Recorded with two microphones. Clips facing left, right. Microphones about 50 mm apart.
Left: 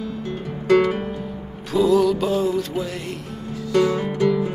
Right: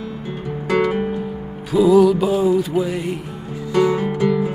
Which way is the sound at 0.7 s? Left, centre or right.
Centre.